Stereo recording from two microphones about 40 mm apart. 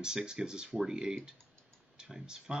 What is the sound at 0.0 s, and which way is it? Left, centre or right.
Speech, centre.